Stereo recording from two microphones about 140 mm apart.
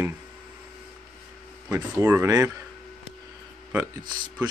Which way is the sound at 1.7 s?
15° right (ahead or behind).